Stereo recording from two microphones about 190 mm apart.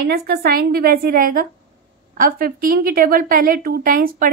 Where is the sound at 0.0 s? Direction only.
55° right (ahead or behind).